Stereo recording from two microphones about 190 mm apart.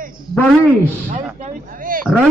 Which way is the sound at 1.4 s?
45° right (ahead or behind).